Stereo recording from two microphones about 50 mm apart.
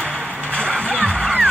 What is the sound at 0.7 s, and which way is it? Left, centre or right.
Music, left.